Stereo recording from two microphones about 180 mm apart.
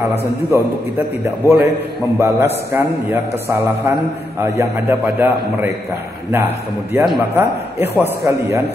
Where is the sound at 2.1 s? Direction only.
15° right (ahead or behind).